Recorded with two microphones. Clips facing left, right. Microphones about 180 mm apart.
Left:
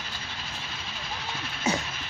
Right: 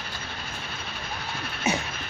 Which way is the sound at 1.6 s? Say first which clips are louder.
Right 1 dB; 25° right (ahead or behind).